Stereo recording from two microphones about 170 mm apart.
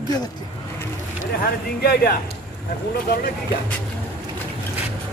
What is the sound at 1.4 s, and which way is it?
Speech, 65° left (ahead or behind).